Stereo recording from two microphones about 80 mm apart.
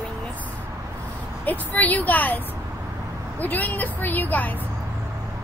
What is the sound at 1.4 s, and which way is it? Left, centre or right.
A woman's voice, left.